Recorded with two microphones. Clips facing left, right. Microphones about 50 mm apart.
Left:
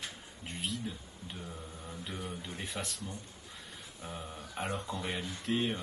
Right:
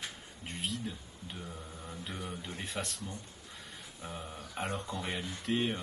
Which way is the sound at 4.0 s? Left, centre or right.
Centre.